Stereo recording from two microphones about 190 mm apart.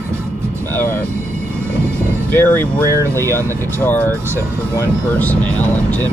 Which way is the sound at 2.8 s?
15° right (ahead or behind).